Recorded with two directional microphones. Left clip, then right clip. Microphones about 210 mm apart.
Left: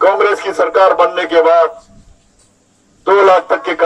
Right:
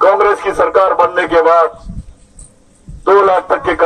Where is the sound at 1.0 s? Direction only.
60° left (ahead or behind).